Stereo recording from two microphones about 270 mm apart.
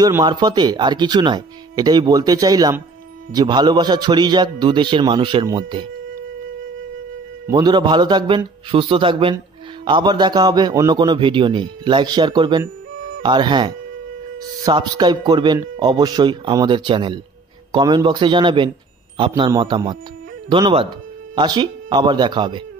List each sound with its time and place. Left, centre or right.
0.0 s speech: centre
7.4 s speech: centre